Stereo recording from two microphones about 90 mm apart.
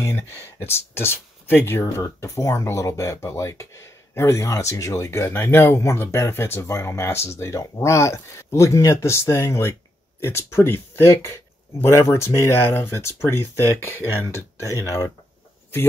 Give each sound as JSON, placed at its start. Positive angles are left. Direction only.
{"t": 0.0, "sound": "speech", "side_deg": 25}